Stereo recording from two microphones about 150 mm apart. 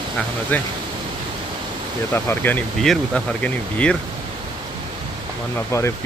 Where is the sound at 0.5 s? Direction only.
10° left (ahead or behind).